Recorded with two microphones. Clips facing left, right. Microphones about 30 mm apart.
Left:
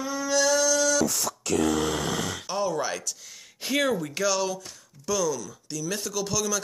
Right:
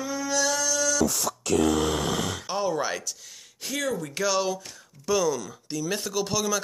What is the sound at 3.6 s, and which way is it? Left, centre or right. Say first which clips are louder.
Speech: left 4 dB; left.